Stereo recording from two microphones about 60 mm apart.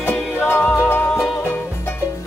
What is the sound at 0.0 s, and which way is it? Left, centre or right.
Music, left.